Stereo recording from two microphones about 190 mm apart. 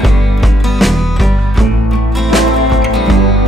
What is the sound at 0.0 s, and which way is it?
Music, centre (ahead or behind).